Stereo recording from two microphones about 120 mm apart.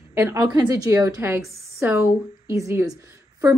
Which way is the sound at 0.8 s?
25° right (ahead or behind).